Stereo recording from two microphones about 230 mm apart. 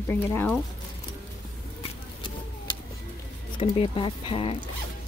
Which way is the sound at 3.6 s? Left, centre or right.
Left.